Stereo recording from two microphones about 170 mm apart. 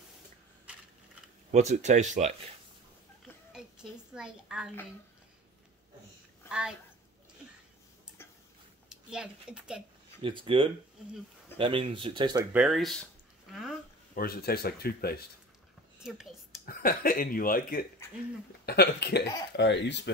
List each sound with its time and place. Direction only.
1.5 s speech: 40° right (ahead or behind)
3.5 s a woman's voice: 5° right (ahead or behind)
8.8 s speech: 5° right (ahead or behind)
10.2 s speech: 30° right (ahead or behind)
12.5 s speech: centre (ahead or behind)
14.1 s speech: 65° left (ahead or behind)
16.0 s speech: 5° right (ahead or behind)
16.6 s speech: 60° left (ahead or behind)
18.7 s speech: 75° left (ahead or behind); by 20.0 s 90° left